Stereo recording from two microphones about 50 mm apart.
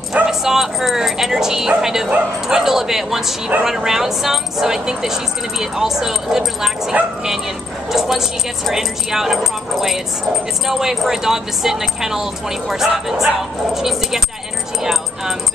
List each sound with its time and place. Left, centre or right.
0.1 s speech: centre
7.9 s speech: centre